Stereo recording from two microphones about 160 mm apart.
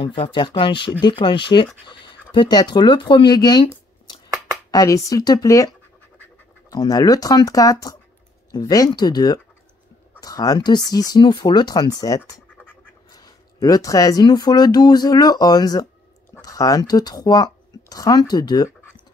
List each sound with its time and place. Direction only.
0.0 s speech: 30° left (ahead or behind)
4.6 s speech: 20° left (ahead or behind)